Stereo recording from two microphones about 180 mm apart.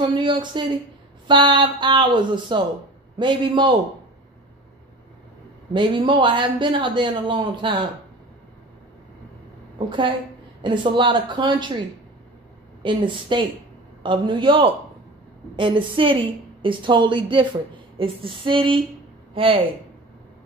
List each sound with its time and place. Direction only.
0.0 s speech: 25° right (ahead or behind)
5.7 s speech: 25° right (ahead or behind)
9.8 s speech: 25° right (ahead or behind)
12.8 s speech: 25° right (ahead or behind)